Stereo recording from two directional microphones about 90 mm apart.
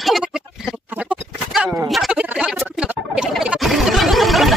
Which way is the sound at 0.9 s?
15° right (ahead or behind).